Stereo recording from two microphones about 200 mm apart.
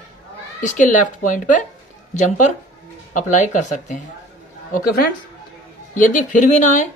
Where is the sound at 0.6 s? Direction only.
40° left (ahead or behind).